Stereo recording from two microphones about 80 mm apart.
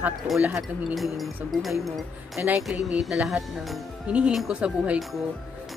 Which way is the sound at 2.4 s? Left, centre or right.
Right.